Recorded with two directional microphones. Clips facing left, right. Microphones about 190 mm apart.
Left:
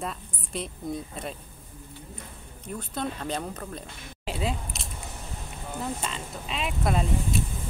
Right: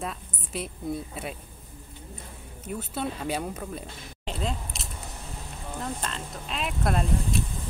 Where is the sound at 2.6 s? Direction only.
5° right (ahead or behind).